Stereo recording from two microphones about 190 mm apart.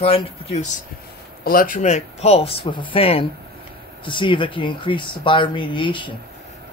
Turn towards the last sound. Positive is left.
turn(degrees=25)  # may be behind; listen again after turning